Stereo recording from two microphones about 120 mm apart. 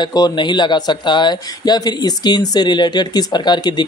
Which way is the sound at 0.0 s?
35° left (ahead or behind).